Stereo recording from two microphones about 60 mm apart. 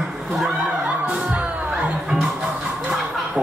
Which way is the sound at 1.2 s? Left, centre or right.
Centre.